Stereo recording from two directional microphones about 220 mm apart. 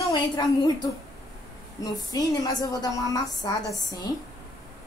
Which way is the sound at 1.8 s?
15° left (ahead or behind).